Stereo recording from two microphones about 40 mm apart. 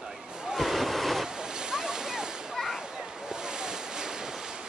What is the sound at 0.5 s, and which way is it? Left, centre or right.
Train, centre.